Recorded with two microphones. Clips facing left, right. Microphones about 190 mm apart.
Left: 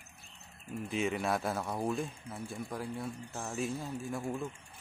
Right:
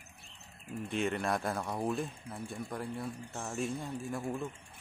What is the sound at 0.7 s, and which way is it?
Speech, centre (ahead or behind).